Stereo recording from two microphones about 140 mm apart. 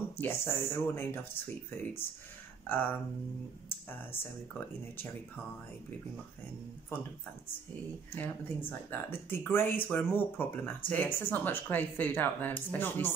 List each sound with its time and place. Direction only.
0.2 s speech: 15° left (ahead or behind)
8.1 s speech: 15° left (ahead or behind)